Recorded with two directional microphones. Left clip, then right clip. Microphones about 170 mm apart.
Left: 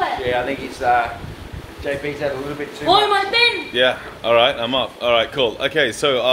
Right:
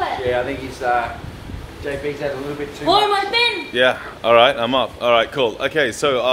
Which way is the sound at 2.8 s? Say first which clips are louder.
Left 1 dB; 75° right (ahead or behind).